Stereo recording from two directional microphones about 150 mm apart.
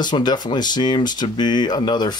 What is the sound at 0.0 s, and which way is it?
Speech, 30° left (ahead or behind).